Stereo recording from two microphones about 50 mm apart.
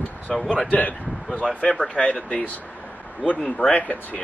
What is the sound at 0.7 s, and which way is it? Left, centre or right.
Speech, left.